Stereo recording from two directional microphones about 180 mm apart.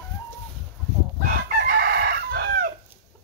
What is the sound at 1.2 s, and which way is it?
Chicken, 55° right (ahead or behind).